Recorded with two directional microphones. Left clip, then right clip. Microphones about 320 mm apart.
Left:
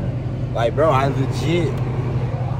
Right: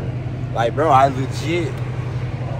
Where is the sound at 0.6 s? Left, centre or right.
Centre.